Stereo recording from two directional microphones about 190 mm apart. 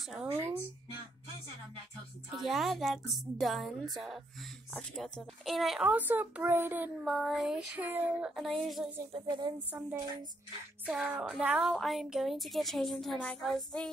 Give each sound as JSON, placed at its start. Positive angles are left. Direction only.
{"t": 0.1, "sound": "a woman's voice", "side_deg": -5}
{"t": 2.3, "sound": "a woman's voice", "side_deg": 0}
{"t": 9.1, "sound": "a woman's voice", "side_deg": -25}
{"t": 10.9, "sound": "a woman's voice", "side_deg": -5}